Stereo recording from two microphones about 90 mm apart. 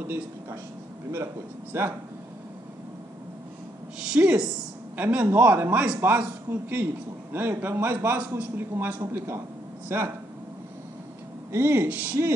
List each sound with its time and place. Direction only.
1.1 s a man's voice: 30° right (ahead or behind)
4.1 s a woman's voice: 10° right (ahead or behind)
4.9 s a man's voice: 20° right (ahead or behind)
7.3 s a man's voice: 25° right (ahead or behind)
11.5 s a man's voice: 30° right (ahead or behind)